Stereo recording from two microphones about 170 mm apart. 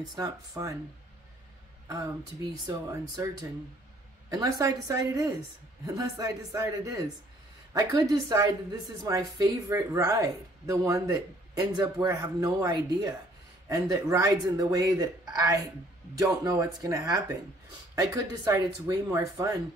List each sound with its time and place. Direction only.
0.0 s speech: 20° right (ahead or behind)
2.5 s speech: 20° right (ahead or behind)
4.3 s speech: 20° right (ahead or behind)